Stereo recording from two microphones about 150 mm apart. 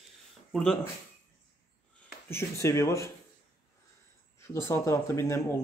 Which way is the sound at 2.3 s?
20° left (ahead or behind).